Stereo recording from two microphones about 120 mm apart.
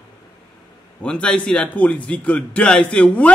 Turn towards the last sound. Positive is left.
turn(degrees=10)  # may be behind; listen again after turning